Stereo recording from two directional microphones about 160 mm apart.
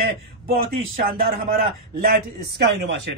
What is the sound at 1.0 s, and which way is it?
A man's voice, 70° right (ahead or behind).